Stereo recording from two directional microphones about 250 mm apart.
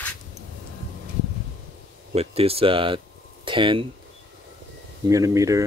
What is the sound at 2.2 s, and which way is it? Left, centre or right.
Speech, right.